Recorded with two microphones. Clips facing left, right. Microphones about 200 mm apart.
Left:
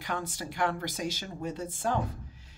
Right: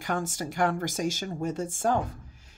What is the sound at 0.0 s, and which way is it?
A woman's voice, 45° right (ahead or behind).